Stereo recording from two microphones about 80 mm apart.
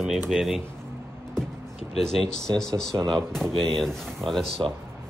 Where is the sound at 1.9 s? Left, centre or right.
Centre.